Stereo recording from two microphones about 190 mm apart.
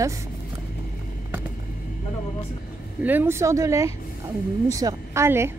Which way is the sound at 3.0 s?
10° right (ahead or behind).